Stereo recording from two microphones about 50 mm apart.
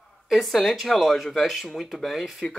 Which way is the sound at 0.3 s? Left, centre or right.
Centre.